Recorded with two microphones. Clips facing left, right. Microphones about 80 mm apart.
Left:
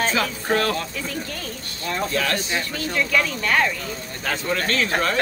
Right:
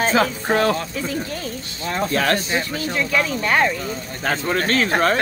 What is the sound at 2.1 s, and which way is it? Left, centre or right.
Speech, right.